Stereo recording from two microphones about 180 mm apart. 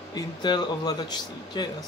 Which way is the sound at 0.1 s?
25° left (ahead or behind).